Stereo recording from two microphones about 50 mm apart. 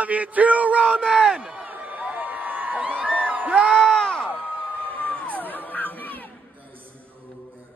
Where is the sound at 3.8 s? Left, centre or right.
Centre.